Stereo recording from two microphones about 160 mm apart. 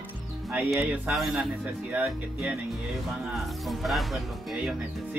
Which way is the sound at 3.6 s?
Centre (ahead or behind).